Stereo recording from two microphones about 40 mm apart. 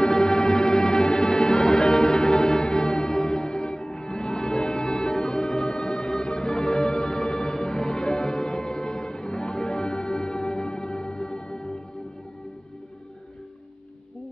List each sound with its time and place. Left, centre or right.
0.1 s music: centre